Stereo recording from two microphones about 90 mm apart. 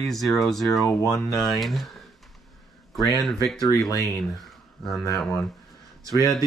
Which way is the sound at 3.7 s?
40° left (ahead or behind).